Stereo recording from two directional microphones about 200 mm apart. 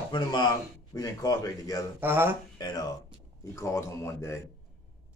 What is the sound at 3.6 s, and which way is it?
Speech, 15° left (ahead or behind).